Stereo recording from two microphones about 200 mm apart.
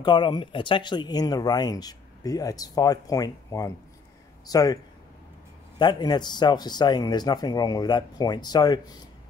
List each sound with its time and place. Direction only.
0.0 s speech: 25° left (ahead or behind)
5.8 s speech: 20° left (ahead or behind)